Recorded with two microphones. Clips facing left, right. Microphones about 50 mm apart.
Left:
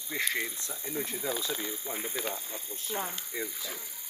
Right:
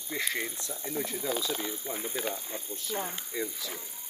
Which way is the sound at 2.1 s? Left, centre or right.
Right.